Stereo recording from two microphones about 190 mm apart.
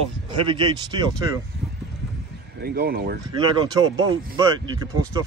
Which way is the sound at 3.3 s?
20° right (ahead or behind).